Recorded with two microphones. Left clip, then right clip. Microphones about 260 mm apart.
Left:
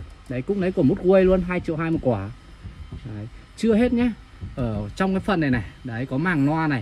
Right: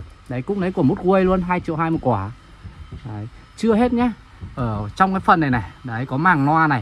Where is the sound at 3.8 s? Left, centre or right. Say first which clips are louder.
Right 3 dB; centre.